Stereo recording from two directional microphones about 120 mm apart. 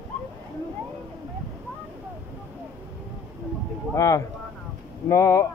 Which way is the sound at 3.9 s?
25° left (ahead or behind).